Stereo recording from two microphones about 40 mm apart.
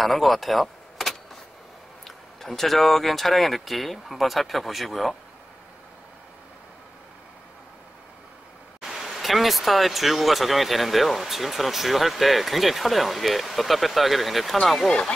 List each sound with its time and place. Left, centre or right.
0.0 s vehicle: centre
2.0 s speech: centre
8.9 s speech: centre
14.9 s speech: left